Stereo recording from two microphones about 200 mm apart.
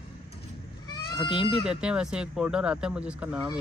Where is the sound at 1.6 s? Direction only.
5° right (ahead or behind).